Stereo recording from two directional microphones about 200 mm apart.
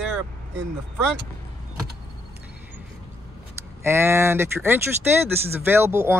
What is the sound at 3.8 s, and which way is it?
Speech, 10° right (ahead or behind).